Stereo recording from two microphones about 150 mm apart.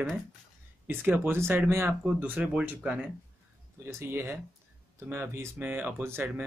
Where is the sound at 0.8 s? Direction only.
15° right (ahead or behind).